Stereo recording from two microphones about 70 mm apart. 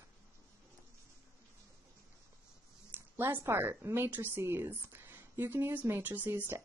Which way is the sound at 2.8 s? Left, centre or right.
Right.